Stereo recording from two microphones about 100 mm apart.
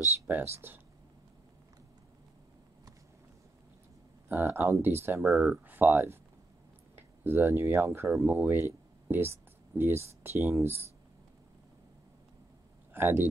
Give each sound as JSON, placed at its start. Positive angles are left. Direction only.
{"t": 0.0, "sound": "speech", "side_deg": -25}
{"t": 4.3, "sound": "speech", "side_deg": -20}
{"t": 12.9, "sound": "speech", "side_deg": -20}